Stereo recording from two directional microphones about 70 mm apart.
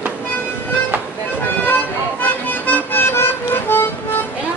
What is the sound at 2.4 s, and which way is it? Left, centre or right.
Music, left.